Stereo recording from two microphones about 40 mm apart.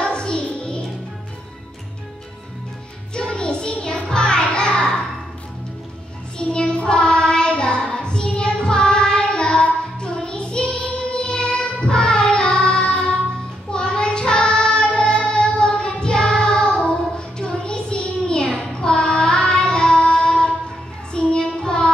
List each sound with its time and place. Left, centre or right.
0.0 s music: left
3.2 s child singing: left
4.1 s music: left
6.3 s child singing: left
11.1 s music: left
13.7 s child singing: left